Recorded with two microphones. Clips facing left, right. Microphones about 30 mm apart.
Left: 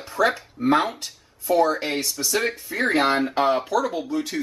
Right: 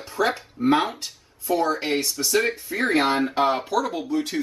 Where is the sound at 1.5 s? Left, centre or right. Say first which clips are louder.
Left 2 dB; centre.